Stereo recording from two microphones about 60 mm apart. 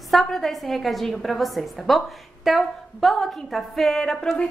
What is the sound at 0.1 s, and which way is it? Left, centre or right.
A woman's voice, centre.